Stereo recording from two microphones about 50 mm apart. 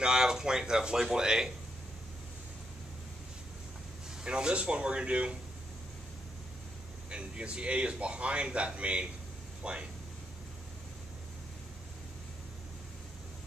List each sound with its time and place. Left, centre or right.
0.0 s speech: centre
4.2 s a man's voice: centre
7.1 s a man's voice: right